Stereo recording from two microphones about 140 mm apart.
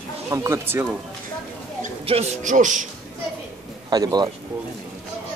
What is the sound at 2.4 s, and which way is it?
Speech, 65° right (ahead or behind).